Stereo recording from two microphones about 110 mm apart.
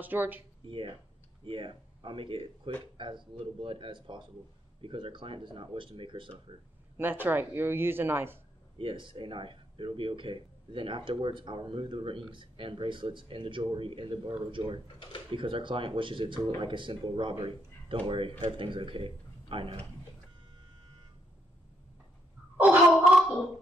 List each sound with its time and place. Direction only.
0.0 s speech: 15° right (ahead or behind)
0.7 s speech: 55° right (ahead or behind)
7.0 s speech: 15° right (ahead or behind)
8.7 s speech: 50° right (ahead or behind)